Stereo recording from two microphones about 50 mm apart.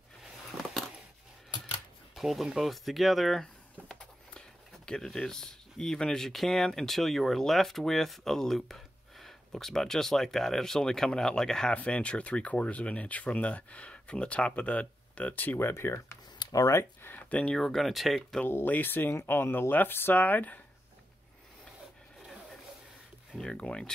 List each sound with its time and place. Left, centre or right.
2.1 s speech: centre
4.8 s speech: centre
11.7 s speech: left
15.7 s speech: left
17.4 s speech: centre
17.6 s speech: centre
18.7 s speech: left
20.2 s speech: left
23.3 s speech: centre